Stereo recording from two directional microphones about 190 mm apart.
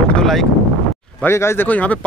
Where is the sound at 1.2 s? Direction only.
15° left (ahead or behind).